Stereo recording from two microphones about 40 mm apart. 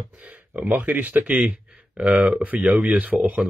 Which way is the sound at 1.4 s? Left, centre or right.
Right.